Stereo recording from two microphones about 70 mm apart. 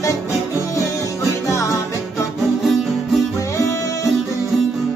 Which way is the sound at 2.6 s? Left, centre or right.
Centre.